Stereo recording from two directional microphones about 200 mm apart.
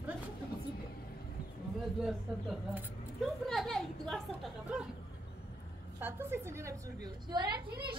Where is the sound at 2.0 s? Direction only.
Centre (ahead or behind).